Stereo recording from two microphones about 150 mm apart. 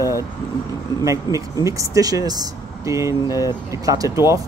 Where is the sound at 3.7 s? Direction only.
20° right (ahead or behind).